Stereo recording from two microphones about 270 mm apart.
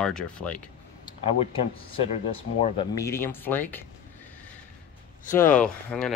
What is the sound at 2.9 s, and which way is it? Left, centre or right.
Speech, centre.